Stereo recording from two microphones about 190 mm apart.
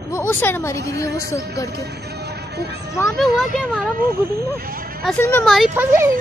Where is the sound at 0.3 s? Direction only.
10° left (ahead or behind).